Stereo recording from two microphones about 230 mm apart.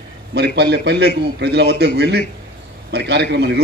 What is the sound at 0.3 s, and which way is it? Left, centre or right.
A man's voice, right.